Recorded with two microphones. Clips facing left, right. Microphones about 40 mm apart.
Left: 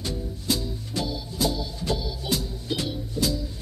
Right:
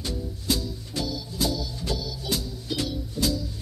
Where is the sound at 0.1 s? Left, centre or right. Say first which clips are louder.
Right 1 dB; centre.